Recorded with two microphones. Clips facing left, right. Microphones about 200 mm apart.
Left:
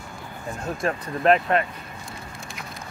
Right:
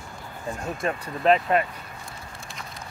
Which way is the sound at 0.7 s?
5° right (ahead or behind).